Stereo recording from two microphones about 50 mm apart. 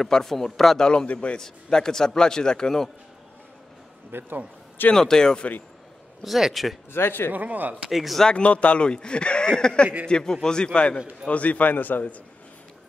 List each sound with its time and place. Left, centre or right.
0.0 s a man's voice: centre
0.8 s speech: left
1.4 s a man's voice: centre
4.1 s a man's voice: right
4.9 s a man's voice: centre
6.2 s speech: centre
6.9 s speech: left
7.3 s speech: right
7.9 s speech: centre
8.3 s a man's voice: left